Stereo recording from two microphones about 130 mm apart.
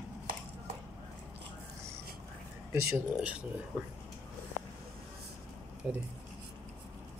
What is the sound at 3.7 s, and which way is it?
Speech, 10° right (ahead or behind).